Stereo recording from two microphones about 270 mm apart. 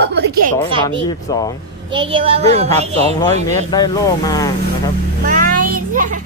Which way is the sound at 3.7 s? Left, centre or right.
Centre.